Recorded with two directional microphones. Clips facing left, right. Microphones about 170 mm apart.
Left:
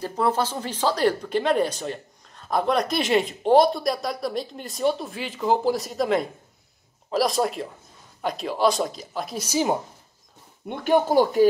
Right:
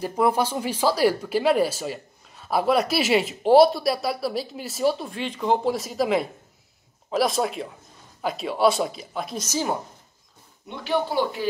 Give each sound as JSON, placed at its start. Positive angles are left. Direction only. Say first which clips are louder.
{"t": 0.0, "sound": "speech", "louder": "right 2 dB", "side_deg": -10}
{"t": 9.4, "sound": "a woman's voice", "louder": "left 4 dB", "side_deg": 15}
{"t": 10.7, "sound": "speech", "louder": "left 5 dB", "side_deg": 50}